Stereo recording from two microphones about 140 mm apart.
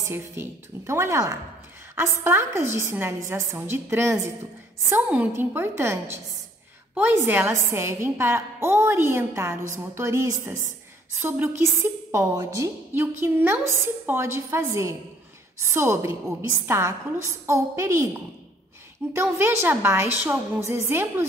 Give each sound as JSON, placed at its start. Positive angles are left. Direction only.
{"t": 0.0, "sound": "a woman's voice", "side_deg": -20}
{"t": 19.1, "sound": "a woman's voice", "side_deg": -15}